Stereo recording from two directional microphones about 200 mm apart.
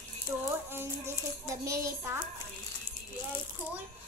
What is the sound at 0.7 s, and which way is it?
A child's voice, 10° right (ahead or behind).